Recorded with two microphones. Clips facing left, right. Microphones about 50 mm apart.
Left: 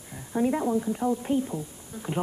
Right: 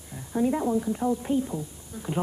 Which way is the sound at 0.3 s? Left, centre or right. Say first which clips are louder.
Even; centre.